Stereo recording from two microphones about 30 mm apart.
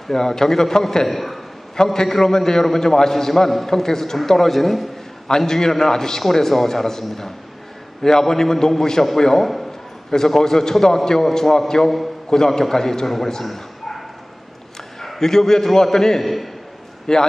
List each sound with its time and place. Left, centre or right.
0.1 s a man's voice: centre
1.0 s a man's voice: centre
5.5 s a man's voice: centre
13.4 s bow-wow: centre
15.1 s a man's voice: centre